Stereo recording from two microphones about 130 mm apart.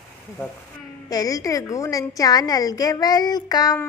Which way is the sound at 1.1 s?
30° left (ahead or behind).